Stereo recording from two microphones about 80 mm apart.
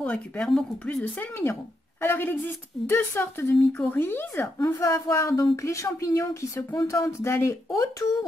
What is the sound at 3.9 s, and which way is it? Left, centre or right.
Speech, left.